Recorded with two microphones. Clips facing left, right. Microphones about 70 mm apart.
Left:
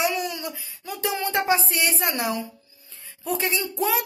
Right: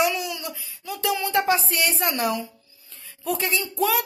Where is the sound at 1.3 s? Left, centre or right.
Centre.